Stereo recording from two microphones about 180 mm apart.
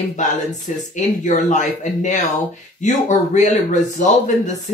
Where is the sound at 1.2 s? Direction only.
45° left (ahead or behind).